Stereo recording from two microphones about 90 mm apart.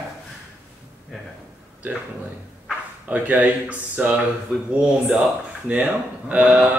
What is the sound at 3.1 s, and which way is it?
Speech, 15° right (ahead or behind).